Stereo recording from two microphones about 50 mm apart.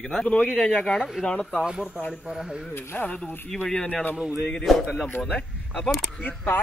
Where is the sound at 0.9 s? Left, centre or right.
Centre.